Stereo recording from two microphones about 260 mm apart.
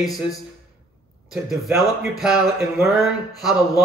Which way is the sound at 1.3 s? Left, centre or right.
Centre.